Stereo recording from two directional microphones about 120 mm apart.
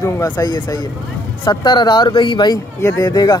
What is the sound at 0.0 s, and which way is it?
Speech, 30° left (ahead or behind).